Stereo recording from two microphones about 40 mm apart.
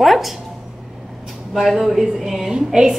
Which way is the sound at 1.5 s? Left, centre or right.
Centre.